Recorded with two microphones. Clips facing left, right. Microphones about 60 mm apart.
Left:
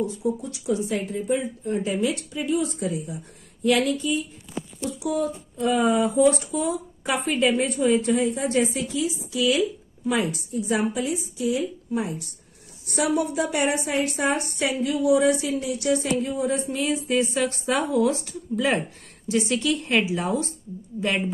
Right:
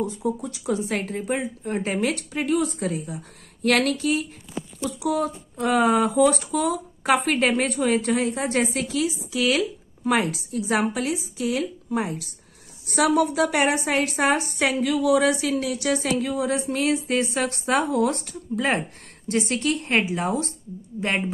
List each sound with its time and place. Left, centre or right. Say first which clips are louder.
0.0 s speech: even; right
3.6 s speech: right 1 dB; right
12.9 s a woman's voice: right 3 dB; right